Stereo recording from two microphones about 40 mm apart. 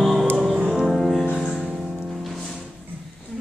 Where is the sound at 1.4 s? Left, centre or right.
Centre.